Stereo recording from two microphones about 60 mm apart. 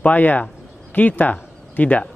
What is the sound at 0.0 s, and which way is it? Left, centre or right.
A man's voice, left.